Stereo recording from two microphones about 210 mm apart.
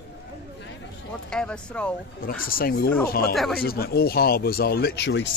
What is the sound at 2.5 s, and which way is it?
Speech, 45° left (ahead or behind).